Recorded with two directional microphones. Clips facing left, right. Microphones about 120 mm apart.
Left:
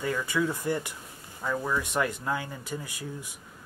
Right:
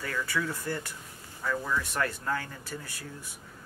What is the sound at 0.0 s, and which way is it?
Speech, 20° left (ahead or behind).